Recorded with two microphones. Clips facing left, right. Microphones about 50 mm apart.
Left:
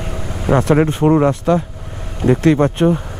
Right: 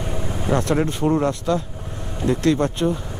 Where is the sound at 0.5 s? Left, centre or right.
Left.